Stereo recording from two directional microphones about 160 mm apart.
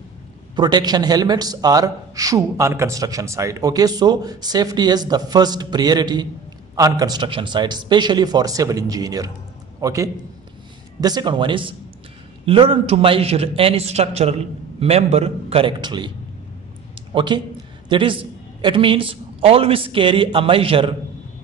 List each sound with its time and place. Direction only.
0.6 s a man's voice: 25° right (ahead or behind)
17.1 s a man's voice: 30° right (ahead or behind)